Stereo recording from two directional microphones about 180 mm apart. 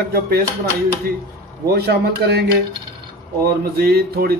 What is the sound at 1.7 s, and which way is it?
Speech, 65° right (ahead or behind).